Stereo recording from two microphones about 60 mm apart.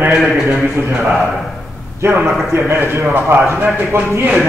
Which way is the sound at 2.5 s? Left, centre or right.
Right.